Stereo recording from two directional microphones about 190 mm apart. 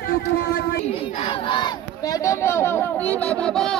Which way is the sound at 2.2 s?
15° left (ahead or behind).